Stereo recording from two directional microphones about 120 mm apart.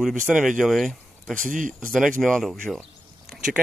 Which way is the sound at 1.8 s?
5° left (ahead or behind).